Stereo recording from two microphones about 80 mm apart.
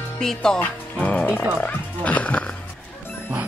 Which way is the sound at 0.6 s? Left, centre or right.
Centre.